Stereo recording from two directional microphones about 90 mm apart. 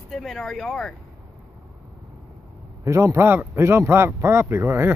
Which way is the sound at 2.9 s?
35° right (ahead or behind).